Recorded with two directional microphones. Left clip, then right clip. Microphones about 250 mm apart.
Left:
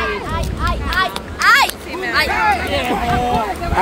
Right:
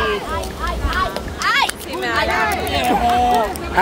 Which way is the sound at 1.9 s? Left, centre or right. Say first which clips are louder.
Right 1 dB; right.